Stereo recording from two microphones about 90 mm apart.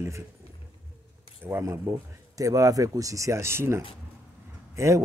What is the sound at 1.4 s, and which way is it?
Speech, 25° right (ahead or behind).